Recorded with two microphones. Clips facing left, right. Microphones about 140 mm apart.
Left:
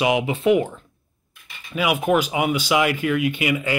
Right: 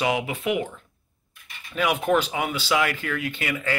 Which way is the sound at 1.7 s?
10° left (ahead or behind).